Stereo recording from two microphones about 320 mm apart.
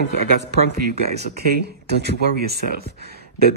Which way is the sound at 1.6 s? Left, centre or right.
Right.